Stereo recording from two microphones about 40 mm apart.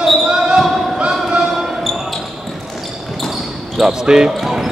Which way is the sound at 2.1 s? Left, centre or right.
Centre.